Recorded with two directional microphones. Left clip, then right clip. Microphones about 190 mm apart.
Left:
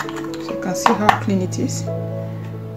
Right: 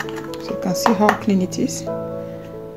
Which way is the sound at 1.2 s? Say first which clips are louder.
Right 1 dB; 35° right (ahead or behind).